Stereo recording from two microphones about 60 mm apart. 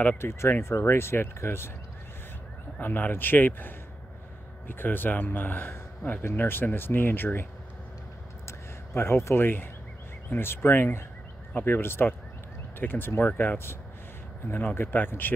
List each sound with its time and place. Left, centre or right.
0.2 s speech: left
2.8 s speech: left
8.5 s speech: left